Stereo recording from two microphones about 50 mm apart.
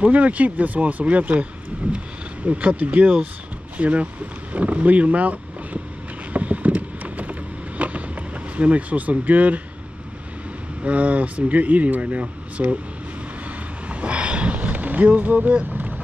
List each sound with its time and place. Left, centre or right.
0.0 s speech: right
6.3 s vehicle: right
8.5 s speech: right
10.8 s speech: right
13.8 s a sound: right